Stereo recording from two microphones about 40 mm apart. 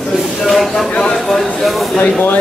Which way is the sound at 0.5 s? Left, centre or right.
Centre.